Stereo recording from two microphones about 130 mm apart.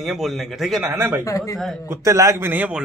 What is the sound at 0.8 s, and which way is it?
Speech, 20° right (ahead or behind).